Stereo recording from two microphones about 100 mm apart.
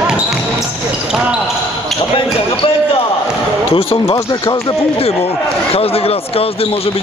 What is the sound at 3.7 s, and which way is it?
Speech, 70° left (ahead or behind).